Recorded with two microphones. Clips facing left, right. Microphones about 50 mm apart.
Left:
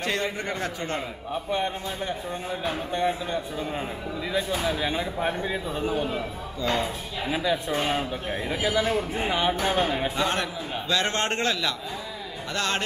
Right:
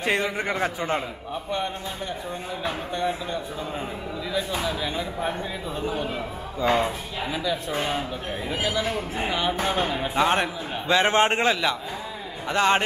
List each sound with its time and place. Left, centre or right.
0.0 s a man's voice: centre
1.3 s speech: centre
6.6 s a man's voice: right
7.2 s a woman's voice: centre
9.5 s music: centre
10.1 s a man's voice: right